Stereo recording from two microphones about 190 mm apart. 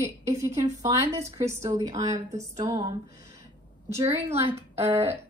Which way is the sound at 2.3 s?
35° right (ahead or behind).